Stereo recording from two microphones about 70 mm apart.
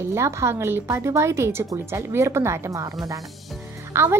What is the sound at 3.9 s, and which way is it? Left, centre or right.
Speech, right.